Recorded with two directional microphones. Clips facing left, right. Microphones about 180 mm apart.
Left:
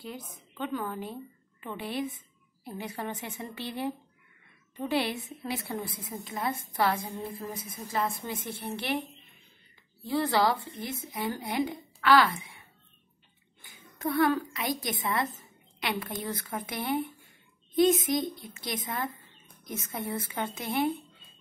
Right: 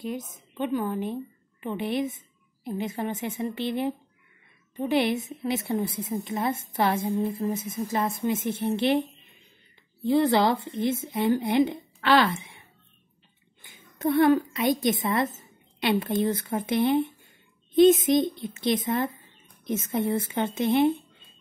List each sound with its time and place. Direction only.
0.0 s a woman's voice: 20° right (ahead or behind)
10.0 s a woman's voice: 20° right (ahead or behind)